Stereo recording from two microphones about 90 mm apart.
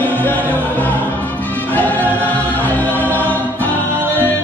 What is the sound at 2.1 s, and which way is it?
Choir, 20° left (ahead or behind).